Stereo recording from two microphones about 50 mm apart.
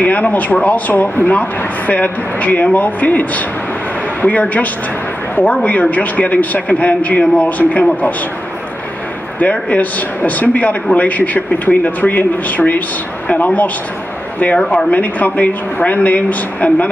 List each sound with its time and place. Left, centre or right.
0.0 s speech: left
9.4 s speech: left
14.7 s speech: left